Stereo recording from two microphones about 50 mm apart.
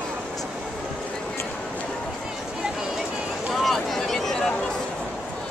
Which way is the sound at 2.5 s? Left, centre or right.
Centre.